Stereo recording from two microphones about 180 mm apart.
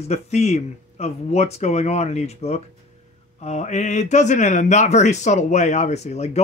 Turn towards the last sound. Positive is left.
turn(degrees=40)  # may be behind; listen again after turning